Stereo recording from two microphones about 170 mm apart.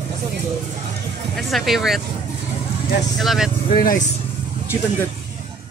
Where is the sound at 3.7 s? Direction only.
50° left (ahead or behind).